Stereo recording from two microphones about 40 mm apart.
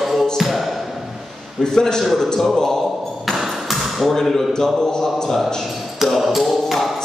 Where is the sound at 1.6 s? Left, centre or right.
Centre.